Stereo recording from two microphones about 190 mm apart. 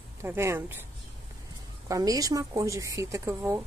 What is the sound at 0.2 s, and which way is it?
Speech, 15° right (ahead or behind).